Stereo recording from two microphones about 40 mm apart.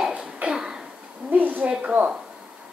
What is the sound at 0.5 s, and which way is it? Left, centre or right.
Throat clearing, centre.